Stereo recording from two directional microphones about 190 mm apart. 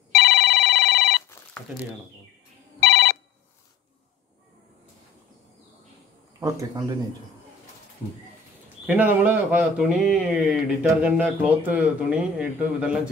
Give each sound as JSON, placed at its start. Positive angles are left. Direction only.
{"t": 0.1, "sound": "telephone bell ringing", "side_deg": 55}
{"t": 2.9, "sound": "telephone bell ringing", "side_deg": 60}
{"t": 6.4, "sound": "speech", "side_deg": -15}
{"t": 8.8, "sound": "speech", "side_deg": -10}